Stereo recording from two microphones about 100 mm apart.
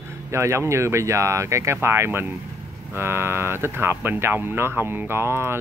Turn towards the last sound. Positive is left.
turn(degrees=-25)  # may be behind; listen again after turning